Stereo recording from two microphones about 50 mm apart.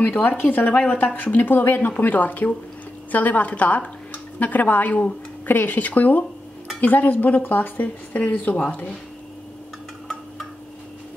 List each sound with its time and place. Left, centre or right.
0.0 s a woman's voice: left